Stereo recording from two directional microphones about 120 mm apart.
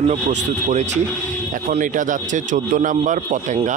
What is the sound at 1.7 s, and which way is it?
A man's voice, 90° right.